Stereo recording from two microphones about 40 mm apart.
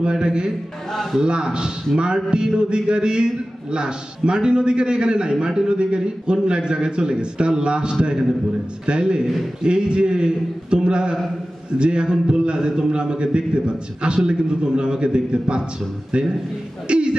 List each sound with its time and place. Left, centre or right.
0.0 s a man's voice: right
16.8 s a man's voice: right